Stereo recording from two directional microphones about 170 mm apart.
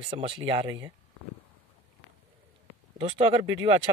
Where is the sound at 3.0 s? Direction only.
35° right (ahead or behind).